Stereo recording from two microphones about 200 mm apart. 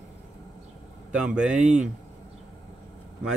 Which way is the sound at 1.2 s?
5° right (ahead or behind).